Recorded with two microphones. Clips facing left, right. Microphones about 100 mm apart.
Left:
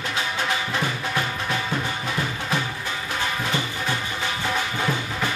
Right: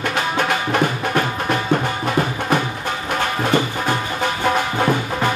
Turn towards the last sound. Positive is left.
turn(degrees=-55)  # may be behind; listen again after turning